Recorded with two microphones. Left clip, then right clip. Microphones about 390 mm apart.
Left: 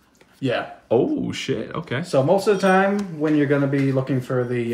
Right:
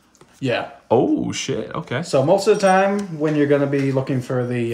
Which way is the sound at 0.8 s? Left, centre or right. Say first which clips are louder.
Right 3 dB; centre.